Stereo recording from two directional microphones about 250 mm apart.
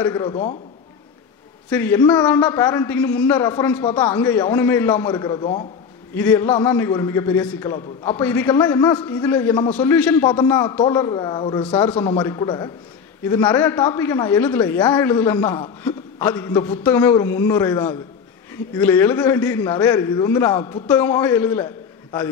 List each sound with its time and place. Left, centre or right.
0.0 s a woman's voice: centre
1.7 s a woman's voice: centre
6.1 s a woman's voice: centre
11.7 s a woman's voice: centre